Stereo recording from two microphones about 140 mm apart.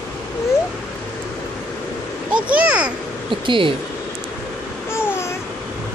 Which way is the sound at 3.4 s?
35° right (ahead or behind).